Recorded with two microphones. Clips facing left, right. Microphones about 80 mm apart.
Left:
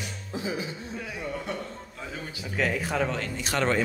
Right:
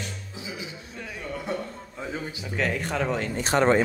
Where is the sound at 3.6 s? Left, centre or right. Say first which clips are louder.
Right 5 dB; right.